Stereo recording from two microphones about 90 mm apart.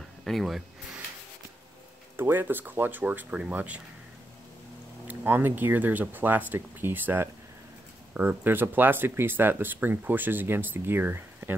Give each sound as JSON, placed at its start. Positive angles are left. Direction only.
{"t": 0.2, "sound": "speech", "side_deg": 0}
{"t": 2.1, "sound": "speech", "side_deg": -25}
{"t": 5.0, "sound": "speech", "side_deg": -25}